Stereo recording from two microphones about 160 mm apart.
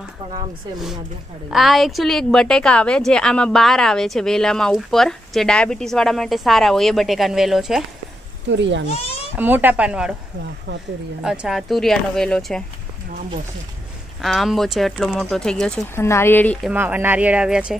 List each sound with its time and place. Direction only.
1.5 s a woman's voice: centre (ahead or behind)
9.4 s speech: 10° right (ahead or behind)
10.7 s speech: 90° right
11.2 s a woman's voice: centre (ahead or behind)
14.2 s a woman's voice: centre (ahead or behind)
15.9 s speech: 15° left (ahead or behind)
16.7 s speech: 10° right (ahead or behind)